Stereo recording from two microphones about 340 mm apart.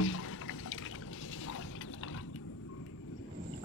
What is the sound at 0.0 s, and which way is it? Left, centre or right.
Water, left.